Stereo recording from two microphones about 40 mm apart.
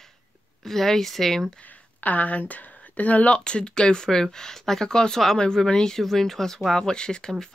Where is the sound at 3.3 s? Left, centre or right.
Left.